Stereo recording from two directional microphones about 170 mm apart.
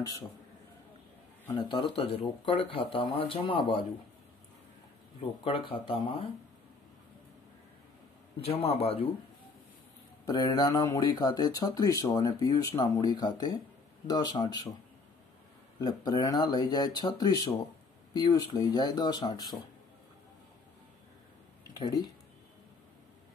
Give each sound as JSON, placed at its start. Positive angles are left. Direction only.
{"t": 1.5, "sound": "speech", "side_deg": 30}
{"t": 5.4, "sound": "speech", "side_deg": 30}
{"t": 8.4, "sound": "speech", "side_deg": 35}
{"t": 10.2, "sound": "speech", "side_deg": 20}
{"t": 15.8, "sound": "speech", "side_deg": 25}
{"t": 21.8, "sound": "speech", "side_deg": 25}